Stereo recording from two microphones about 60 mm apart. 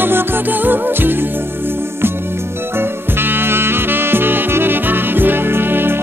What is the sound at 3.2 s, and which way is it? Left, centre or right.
Music, right.